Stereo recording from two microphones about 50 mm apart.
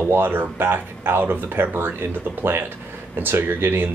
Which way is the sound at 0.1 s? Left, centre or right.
Right.